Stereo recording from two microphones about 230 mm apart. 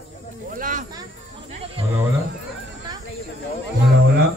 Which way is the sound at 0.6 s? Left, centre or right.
Right.